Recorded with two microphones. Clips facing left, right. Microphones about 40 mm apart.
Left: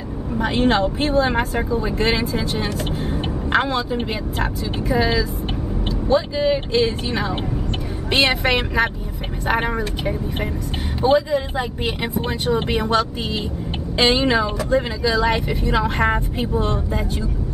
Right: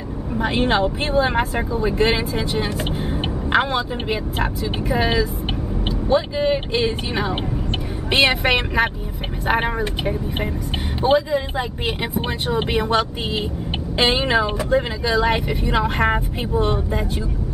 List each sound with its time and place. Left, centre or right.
0.3 s speech: centre
12.2 s speech: centre